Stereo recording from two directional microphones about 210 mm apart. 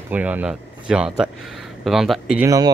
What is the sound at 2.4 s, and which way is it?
Speech, 15° right (ahead or behind).